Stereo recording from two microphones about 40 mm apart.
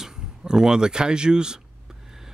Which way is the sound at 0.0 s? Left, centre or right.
Centre.